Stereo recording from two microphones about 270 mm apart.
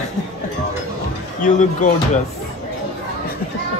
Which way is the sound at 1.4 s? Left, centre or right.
Left.